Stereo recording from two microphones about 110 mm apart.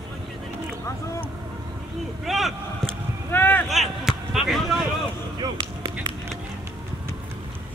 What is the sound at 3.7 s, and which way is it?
Basketball bounce, centre (ahead or behind).